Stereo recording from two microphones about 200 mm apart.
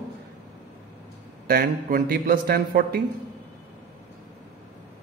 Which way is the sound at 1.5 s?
45° right (ahead or behind).